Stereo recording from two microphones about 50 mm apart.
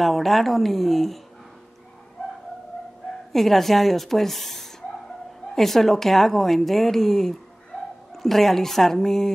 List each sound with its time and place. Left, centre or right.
0.0 s a woman's voice: centre
3.3 s a woman's voice: centre